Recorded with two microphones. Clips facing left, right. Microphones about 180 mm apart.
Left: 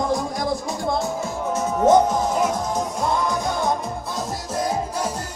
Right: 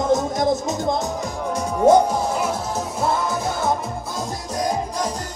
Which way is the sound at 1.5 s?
10° right (ahead or behind).